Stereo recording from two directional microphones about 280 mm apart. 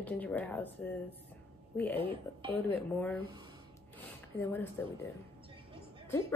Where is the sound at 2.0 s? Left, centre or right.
Centre.